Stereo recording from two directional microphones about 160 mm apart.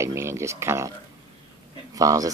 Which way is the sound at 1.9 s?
20° right (ahead or behind).